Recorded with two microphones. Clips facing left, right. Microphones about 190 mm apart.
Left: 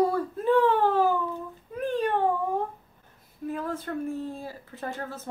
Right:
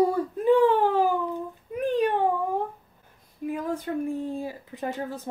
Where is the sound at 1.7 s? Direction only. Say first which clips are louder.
Right 3 dB; 15° right (ahead or behind).